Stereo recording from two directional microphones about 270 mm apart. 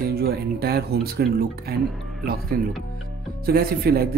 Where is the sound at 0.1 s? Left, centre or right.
Right.